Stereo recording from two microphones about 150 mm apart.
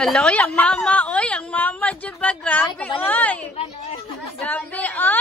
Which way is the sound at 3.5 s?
45° left (ahead or behind).